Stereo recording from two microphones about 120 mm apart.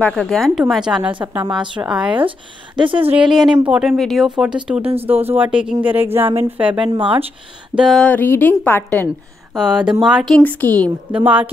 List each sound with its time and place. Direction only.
0.0 s a woman's voice: 5° left (ahead or behind)
2.1 s speech: 45° right (ahead or behind)
3.2 s a woman's voice: centre (ahead or behind)
5.0 s speech: 15° right (ahead or behind)
7.0 s speech: 50° right (ahead or behind)
7.7 s a sound: 5° right (ahead or behind)
8.0 s a woman's voice: 15° left (ahead or behind)
9.6 s a woman's voice: 5° right (ahead or behind)
10.3 s a woman's voice: 15° left (ahead or behind)
11.2 s speech: 15° right (ahead or behind)